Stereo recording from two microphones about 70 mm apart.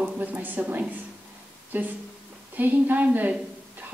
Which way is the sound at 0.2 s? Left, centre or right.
Right.